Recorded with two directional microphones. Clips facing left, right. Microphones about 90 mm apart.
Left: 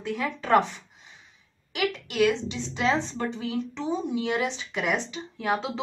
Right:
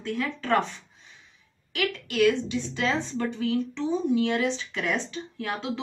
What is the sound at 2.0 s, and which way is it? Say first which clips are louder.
A woman's voice: right 2 dB; 20° left (ahead or behind).